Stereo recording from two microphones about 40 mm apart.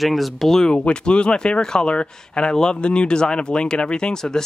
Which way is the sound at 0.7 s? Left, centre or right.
Left.